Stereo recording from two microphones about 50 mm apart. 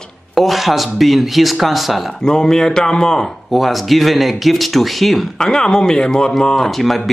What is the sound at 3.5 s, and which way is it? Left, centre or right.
Speech, centre.